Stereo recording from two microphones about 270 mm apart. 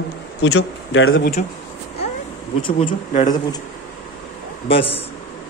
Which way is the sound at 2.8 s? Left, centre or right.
Left.